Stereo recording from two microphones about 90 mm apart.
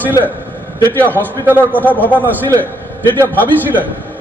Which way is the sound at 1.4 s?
20° right (ahead or behind).